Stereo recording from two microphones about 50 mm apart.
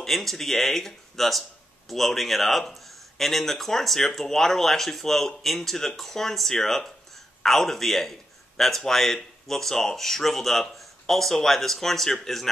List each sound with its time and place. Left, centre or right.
0.0 s speech: centre